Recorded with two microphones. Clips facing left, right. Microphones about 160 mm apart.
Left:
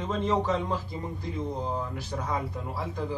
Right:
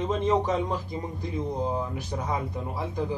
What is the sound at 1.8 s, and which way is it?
Speech, 20° right (ahead or behind).